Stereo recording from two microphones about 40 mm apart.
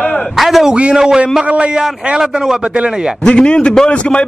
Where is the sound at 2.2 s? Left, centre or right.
Centre.